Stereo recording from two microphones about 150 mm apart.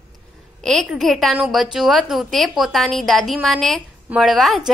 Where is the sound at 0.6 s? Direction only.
Centre (ahead or behind).